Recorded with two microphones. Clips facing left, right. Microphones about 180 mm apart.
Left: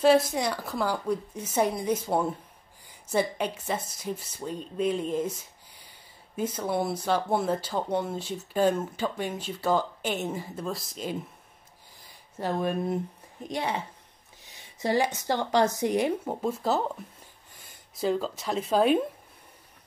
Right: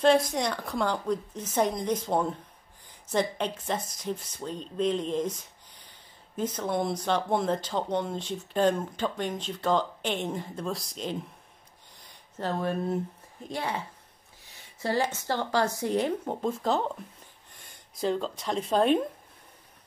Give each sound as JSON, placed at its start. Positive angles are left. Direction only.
{"t": 0.0, "sound": "speech", "side_deg": 5}